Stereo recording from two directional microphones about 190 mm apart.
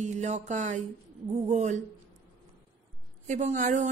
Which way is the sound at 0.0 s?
40° right (ahead or behind).